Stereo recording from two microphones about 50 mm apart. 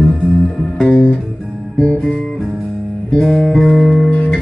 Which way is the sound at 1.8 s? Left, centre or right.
Centre.